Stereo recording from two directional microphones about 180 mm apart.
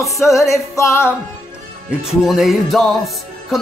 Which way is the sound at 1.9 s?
Centre (ahead or behind).